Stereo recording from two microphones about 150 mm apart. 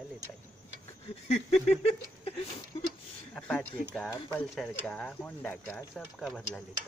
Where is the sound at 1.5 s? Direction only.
40° left (ahead or behind).